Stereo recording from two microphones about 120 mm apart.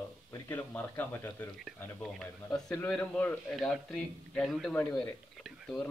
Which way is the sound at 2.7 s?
15° left (ahead or behind).